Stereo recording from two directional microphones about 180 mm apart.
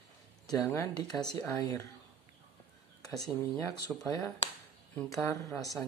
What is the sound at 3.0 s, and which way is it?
A woman's voice, 20° left (ahead or behind).